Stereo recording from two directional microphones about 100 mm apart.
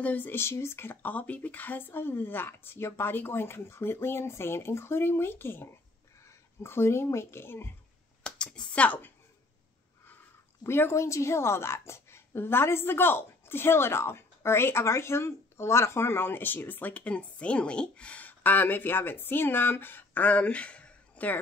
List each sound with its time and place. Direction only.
0.0 s speech: 20° left (ahead or behind)
8.2 s a sound: 10° left (ahead or behind)
10.6 s speech: 25° left (ahead or behind)